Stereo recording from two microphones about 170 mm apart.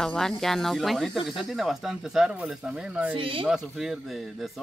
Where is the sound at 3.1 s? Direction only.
30° right (ahead or behind).